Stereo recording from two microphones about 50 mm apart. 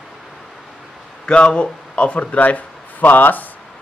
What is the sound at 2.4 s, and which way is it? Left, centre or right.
Speech, left.